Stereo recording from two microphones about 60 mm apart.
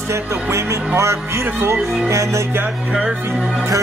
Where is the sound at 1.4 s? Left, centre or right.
Right.